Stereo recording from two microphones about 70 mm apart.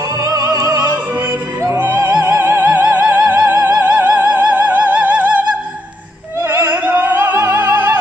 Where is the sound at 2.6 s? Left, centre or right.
Right.